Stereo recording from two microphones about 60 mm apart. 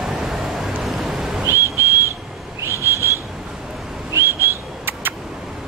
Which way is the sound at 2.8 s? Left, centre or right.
Right.